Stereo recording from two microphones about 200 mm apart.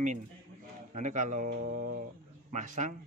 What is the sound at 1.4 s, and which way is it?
Mantra, 55° right (ahead or behind).